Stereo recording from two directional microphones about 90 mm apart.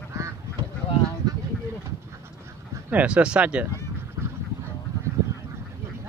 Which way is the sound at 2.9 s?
15° right (ahead or behind).